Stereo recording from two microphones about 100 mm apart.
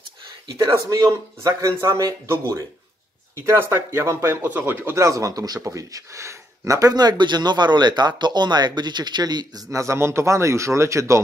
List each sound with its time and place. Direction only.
0.6 s speech: 40° right (ahead or behind)
9.7 s speech: 30° right (ahead or behind)